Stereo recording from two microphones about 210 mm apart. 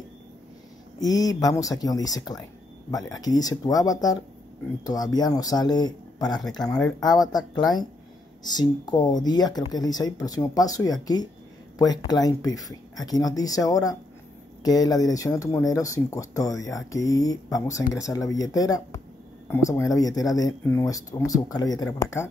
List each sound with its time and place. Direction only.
0.9 s speech: 15° left (ahead or behind)
12.5 s speech: centre (ahead or behind)
13.0 s speech: 20° left (ahead or behind)